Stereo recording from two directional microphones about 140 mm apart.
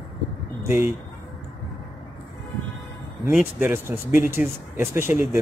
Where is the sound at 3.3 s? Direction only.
10° right (ahead or behind).